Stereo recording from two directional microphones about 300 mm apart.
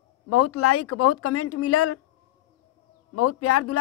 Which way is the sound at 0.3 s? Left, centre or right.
Left.